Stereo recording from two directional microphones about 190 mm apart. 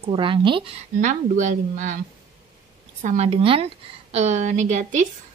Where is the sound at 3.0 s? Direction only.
40° right (ahead or behind).